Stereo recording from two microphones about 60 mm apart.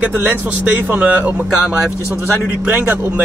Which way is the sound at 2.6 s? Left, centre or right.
Right.